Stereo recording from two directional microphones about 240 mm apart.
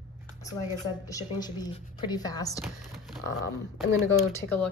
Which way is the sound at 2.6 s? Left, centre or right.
Centre.